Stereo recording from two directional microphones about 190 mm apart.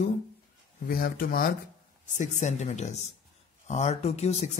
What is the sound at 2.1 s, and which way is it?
Speech, 40° left (ahead or behind).